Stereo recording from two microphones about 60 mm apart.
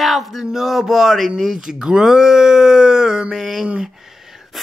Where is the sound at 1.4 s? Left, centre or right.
Centre.